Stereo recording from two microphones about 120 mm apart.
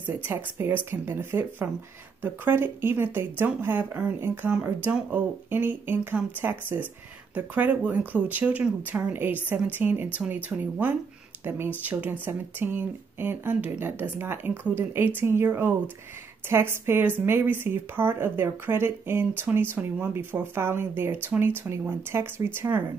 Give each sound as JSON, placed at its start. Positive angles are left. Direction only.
{"t": 0.0, "sound": "speech", "side_deg": -15}